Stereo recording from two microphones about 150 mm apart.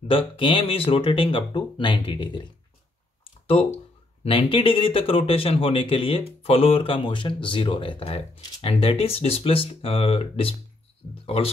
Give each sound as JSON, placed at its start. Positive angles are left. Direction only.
{"t": 0.1, "sound": "speech", "side_deg": 35}
{"t": 3.4, "sound": "speech", "side_deg": 40}